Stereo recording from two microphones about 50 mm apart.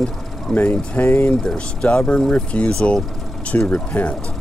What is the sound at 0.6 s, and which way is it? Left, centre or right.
Speech, left.